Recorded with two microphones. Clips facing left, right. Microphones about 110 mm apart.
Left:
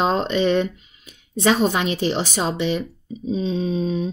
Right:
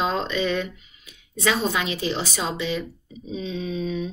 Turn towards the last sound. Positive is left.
turn(degrees=35)  # may be behind; listen again after turning